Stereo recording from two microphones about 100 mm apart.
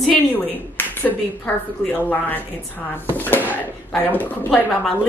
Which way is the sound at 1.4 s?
15° left (ahead or behind).